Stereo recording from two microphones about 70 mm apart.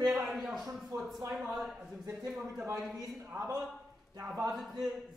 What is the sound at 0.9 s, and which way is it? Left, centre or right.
Speech, right.